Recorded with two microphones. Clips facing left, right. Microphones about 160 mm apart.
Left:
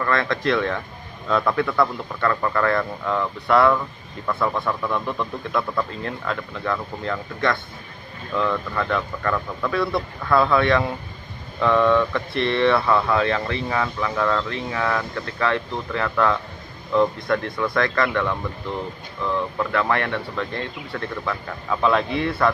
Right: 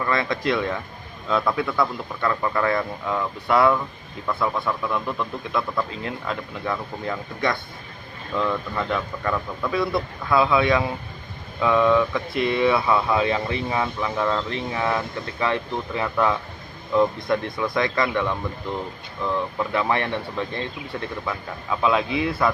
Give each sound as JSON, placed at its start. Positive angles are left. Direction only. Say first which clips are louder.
{"t": 0.0, "sound": "speech", "louder": "left 1 dB", "side_deg": -10}